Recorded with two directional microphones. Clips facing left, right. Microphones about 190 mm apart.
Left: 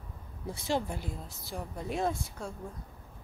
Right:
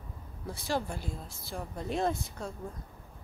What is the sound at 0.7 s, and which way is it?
A woman's voice, 20° left (ahead or behind).